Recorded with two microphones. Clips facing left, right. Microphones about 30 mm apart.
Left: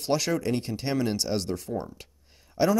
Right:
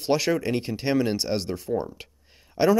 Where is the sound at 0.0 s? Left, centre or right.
Centre.